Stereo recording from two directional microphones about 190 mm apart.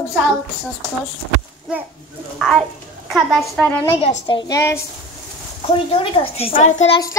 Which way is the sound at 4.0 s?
35° left (ahead or behind).